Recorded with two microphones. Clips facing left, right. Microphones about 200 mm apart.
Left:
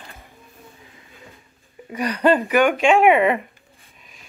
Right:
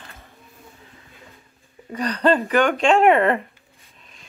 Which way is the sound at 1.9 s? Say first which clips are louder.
Left 1 dB; 10° left (ahead or behind).